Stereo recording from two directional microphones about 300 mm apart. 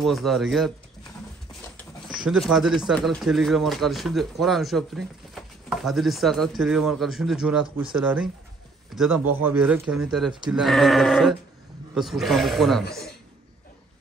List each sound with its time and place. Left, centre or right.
0.0 s speech: centre
2.2 s speech: centre
7.6 s speech: centre
7.9 s speech: centre